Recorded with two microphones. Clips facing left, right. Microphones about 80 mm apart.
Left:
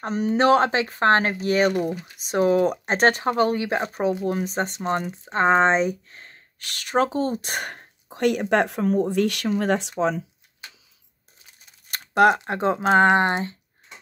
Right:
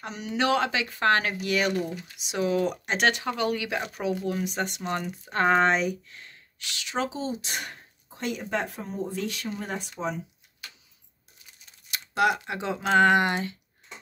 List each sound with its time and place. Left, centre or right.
0.0 s speech: left
5.1 s speech: left
8.1 s speech: left
11.9 s computer keyboard: left
12.4 s speech: left